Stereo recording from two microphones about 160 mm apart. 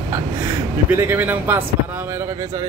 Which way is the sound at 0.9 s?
15° right (ahead or behind).